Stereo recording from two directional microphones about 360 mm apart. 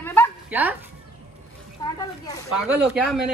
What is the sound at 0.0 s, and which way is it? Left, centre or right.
Dog, centre.